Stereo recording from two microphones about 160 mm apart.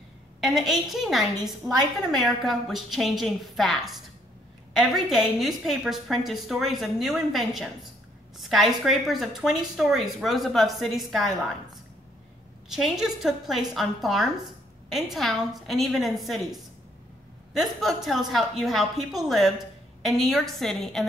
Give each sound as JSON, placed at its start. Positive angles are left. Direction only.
{"t": 0.4, "sound": "a woman's voice", "side_deg": 0}
{"t": 12.6, "sound": "a woman's voice", "side_deg": -5}
{"t": 17.6, "sound": "a woman's voice", "side_deg": 0}